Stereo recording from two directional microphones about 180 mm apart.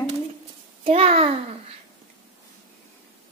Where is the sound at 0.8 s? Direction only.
30° right (ahead or behind).